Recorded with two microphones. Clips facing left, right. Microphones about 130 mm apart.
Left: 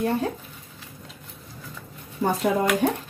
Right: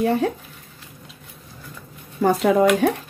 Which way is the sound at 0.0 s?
90° right.